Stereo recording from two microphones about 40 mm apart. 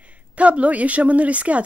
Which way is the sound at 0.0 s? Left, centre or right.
Right.